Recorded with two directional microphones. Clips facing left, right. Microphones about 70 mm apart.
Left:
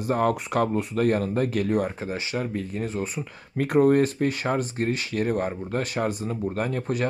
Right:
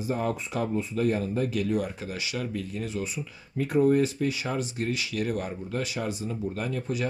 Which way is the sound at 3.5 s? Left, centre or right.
Left.